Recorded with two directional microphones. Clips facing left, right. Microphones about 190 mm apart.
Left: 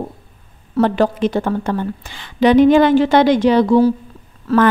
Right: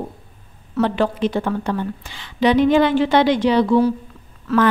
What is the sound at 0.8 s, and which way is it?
A woman's voice, 45° left (ahead or behind).